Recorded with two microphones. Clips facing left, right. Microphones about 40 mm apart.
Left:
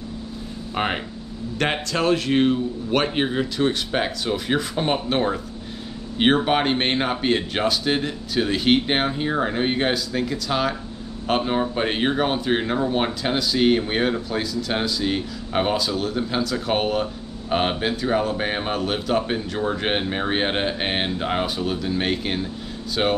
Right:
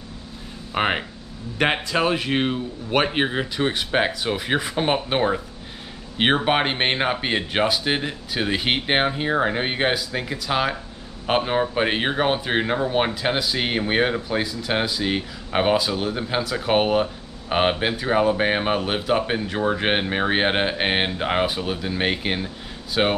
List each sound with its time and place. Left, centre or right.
0.7 s speech: centre